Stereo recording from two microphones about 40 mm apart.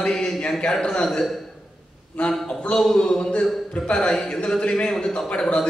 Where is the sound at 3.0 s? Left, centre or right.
Left.